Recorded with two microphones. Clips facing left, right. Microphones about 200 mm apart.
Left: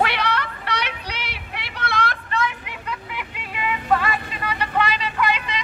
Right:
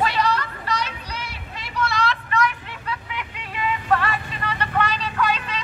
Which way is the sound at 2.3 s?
30° left (ahead or behind).